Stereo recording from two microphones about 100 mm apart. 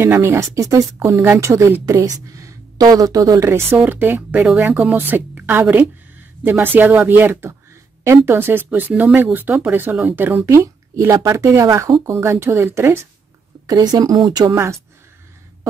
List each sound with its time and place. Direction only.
0.0 s speech: 25° right (ahead or behind)
13.7 s speech: 40° right (ahead or behind)
14.5 s speech: 25° right (ahead or behind)